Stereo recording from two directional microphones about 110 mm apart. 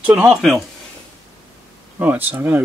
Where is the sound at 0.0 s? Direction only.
10° right (ahead or behind).